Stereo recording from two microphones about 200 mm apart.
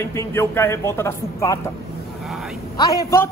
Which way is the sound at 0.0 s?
15° left (ahead or behind).